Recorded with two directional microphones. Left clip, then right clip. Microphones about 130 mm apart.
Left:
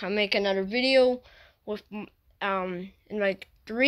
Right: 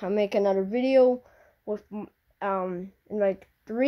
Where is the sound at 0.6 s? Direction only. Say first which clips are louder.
Even; 10° right (ahead or behind).